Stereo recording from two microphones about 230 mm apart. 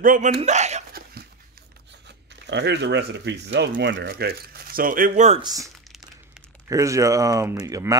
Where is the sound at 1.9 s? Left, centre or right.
Right.